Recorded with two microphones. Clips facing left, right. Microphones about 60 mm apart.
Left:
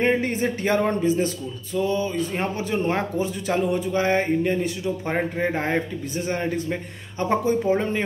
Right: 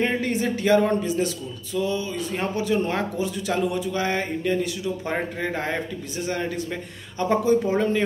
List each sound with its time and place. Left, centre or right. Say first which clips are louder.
0.0 s speech: left 2 dB; left